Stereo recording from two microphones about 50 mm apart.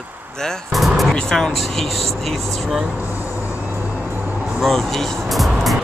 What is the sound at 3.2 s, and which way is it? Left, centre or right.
Music, left.